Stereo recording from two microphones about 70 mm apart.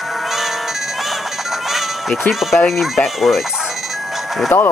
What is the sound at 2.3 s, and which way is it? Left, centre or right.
Speech, centre.